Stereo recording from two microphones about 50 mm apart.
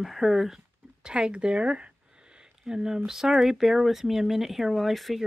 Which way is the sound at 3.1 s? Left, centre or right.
Centre.